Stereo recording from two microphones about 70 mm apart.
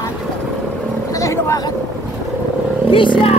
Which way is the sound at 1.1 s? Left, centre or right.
Left.